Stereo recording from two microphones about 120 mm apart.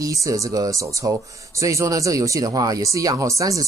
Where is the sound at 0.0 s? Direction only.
30° right (ahead or behind).